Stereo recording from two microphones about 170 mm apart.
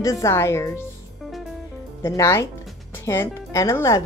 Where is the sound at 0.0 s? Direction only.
15° left (ahead or behind).